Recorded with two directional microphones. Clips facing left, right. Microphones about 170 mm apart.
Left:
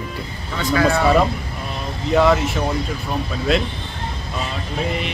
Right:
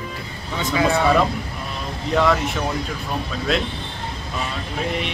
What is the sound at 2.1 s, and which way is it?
Speech, 5° left (ahead or behind).